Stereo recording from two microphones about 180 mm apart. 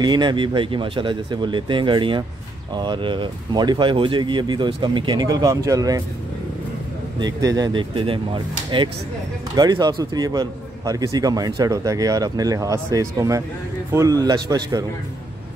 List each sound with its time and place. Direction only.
0.0 s a man's voice: 25° right (ahead or behind)
7.2 s a man's voice: 20° right (ahead or behind)